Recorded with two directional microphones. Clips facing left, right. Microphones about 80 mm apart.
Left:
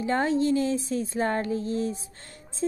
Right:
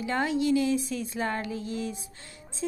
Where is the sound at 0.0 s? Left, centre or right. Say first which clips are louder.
Left 3 dB; left.